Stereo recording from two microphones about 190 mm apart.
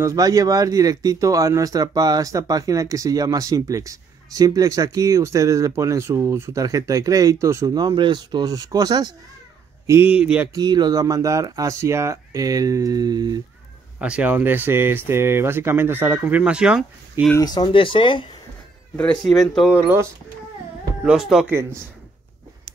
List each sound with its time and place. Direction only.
0.0 s speech: 20° right (ahead or behind)
9.8 s speech: 10° right (ahead or behind)
10.5 s speech: 20° right (ahead or behind)
13.9 s speech: 5° right (ahead or behind)
17.3 s speech: 20° left (ahead or behind)
18.9 s speech: 5° left (ahead or behind)
19.7 s speech: 10° right (ahead or behind)